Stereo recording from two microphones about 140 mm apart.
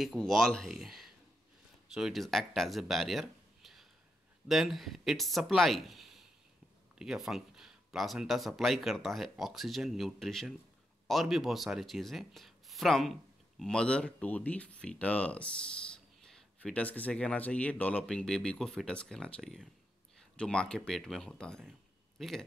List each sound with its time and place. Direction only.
0.0 s speech: centre (ahead or behind)